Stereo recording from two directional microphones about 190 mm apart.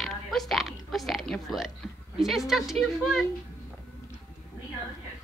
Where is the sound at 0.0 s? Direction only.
Centre (ahead or behind).